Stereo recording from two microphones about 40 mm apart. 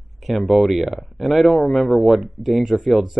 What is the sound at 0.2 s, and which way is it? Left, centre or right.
Speech, centre.